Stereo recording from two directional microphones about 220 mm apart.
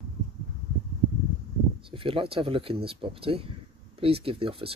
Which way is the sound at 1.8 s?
25° right (ahead or behind).